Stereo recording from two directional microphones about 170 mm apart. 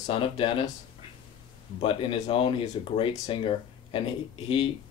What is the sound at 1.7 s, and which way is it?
Speech, 35° left (ahead or behind).